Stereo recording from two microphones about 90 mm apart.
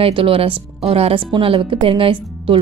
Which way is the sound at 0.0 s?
85° right.